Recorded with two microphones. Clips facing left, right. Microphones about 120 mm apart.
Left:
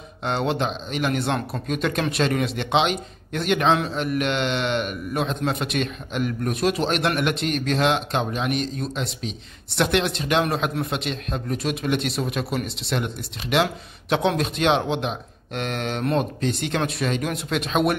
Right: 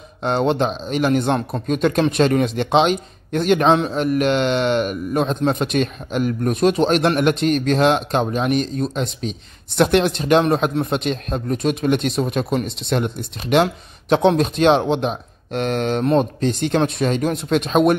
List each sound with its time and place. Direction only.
0.2 s speech: 35° right (ahead or behind)